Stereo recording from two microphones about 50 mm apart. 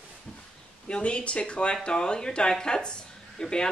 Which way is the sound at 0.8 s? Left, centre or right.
Left.